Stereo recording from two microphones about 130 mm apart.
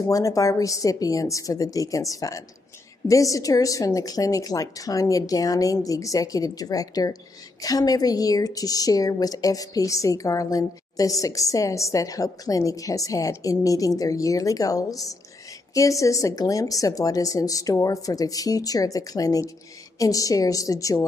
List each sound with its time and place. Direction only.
0.0 s a woman's voice: 25° left (ahead or behind)